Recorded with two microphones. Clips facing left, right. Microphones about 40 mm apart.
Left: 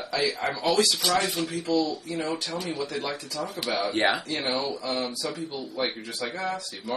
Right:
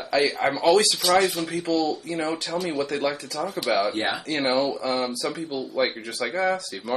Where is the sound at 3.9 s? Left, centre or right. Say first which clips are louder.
Left 2 dB; left.